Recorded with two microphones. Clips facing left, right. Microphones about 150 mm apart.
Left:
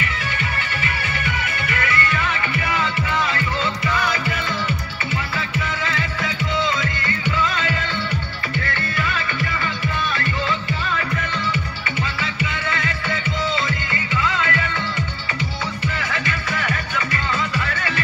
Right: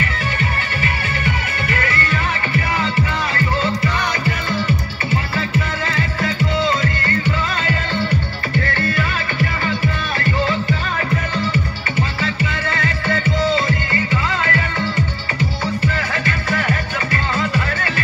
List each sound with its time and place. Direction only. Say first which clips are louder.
0.8 s music: right 5 dB; 35° right (ahead or behind)
5.9 s music: right 4 dB; 40° right (ahead or behind)
11.5 s music: right 5 dB; 35° right (ahead or behind)
16.1 s music: right 4 dB; 30° right (ahead or behind)